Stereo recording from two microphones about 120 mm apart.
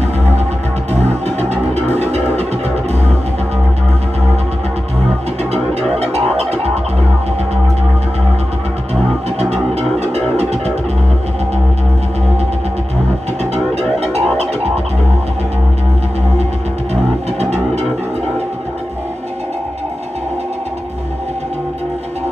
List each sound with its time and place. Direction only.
0.9 s music: 65° right (ahead or behind)
5.4 s music: 60° right (ahead or behind)
9.4 s music: 60° right (ahead or behind)
13.4 s music: 60° right (ahead or behind)
16.9 s music: 60° right (ahead or behind)